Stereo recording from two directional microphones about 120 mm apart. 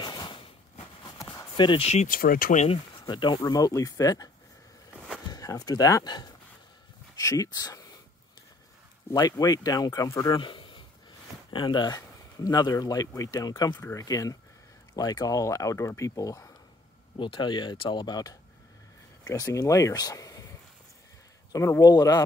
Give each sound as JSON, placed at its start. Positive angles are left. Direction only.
{"t": 0.0, "sound": "a sound", "side_deg": 40}
{"t": 1.5, "sound": "speech", "side_deg": 40}
{"t": 3.1, "sound": "speech", "side_deg": 40}
{"t": 5.3, "sound": "speech", "side_deg": 30}
{"t": 9.1, "sound": "speech", "side_deg": 30}
{"t": 10.4, "sound": "a sound", "side_deg": 45}
{"t": 11.5, "sound": "speech", "side_deg": 40}
{"t": 17.2, "sound": "speech", "side_deg": 40}
{"t": 21.5, "sound": "speech", "side_deg": 25}